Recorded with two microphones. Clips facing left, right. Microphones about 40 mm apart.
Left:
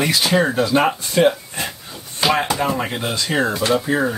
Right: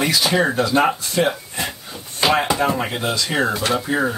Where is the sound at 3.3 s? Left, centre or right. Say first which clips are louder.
Left 3 dB; centre.